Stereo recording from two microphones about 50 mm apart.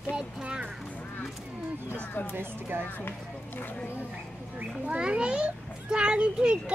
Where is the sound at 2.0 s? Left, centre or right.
Left.